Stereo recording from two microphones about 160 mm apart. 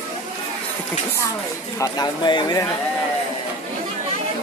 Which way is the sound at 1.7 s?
20° left (ahead or behind).